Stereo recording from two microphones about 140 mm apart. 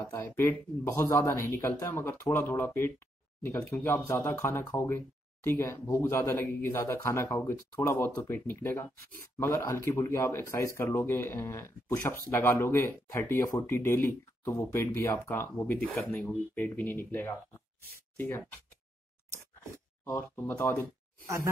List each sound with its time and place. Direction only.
0.1 s speech: 15° left (ahead or behind)
20.4 s speech: 15° left (ahead or behind)